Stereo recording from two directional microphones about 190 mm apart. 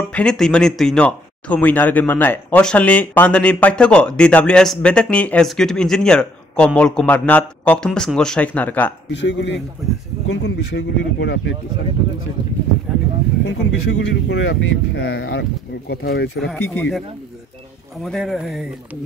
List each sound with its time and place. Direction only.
0.1 s speech: 5° left (ahead or behind)
9.1 s speech: 65° left (ahead or behind)
13.5 s speech: 70° left (ahead or behind)
16.4 s speech: 5° left (ahead or behind)
18.0 s speech: centre (ahead or behind)